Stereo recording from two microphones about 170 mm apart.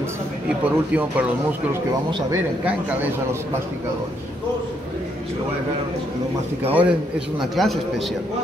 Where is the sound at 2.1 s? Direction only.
20° right (ahead or behind).